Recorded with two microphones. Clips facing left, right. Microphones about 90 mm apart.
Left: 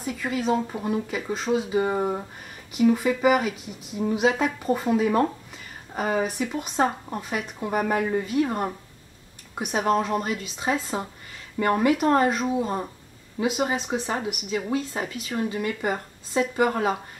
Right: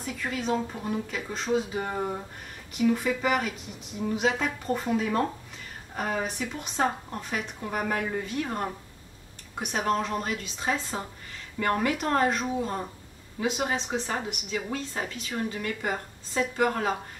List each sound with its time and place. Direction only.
0.0 s a woman's voice: 5° left (ahead or behind)